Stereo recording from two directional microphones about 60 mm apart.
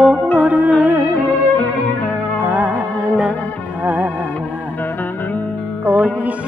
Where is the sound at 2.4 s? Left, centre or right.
Right.